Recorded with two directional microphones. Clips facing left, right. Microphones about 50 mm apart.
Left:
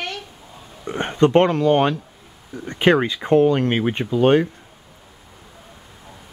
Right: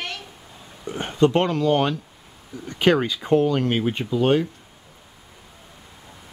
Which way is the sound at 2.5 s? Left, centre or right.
Left.